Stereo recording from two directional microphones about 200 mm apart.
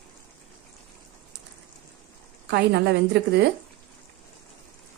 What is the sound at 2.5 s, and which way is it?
Speech, 55° right (ahead or behind).